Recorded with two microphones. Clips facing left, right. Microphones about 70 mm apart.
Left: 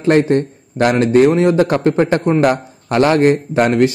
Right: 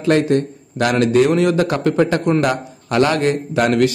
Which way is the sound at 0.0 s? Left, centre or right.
Left.